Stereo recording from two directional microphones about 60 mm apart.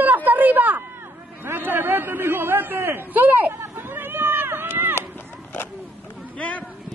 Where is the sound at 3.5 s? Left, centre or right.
Right.